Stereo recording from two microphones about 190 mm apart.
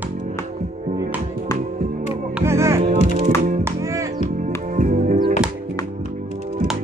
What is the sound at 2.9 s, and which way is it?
Music, 50° right (ahead or behind).